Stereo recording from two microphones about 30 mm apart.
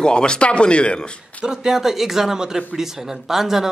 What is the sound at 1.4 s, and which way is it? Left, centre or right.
A man's voice, right.